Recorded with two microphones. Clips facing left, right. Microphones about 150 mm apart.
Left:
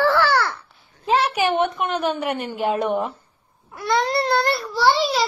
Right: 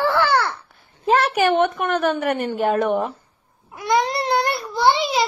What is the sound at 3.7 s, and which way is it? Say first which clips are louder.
Baby cry: right 1 dB; 15° right (ahead or behind).